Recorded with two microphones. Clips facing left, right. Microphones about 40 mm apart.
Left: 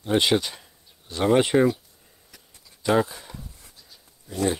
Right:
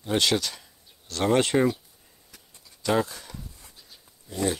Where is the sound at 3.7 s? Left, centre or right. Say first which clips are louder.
Even; centre.